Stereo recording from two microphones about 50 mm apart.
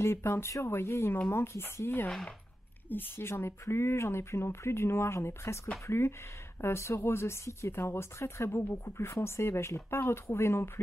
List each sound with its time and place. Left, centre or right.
0.0 s speech: left
7.7 s speech: left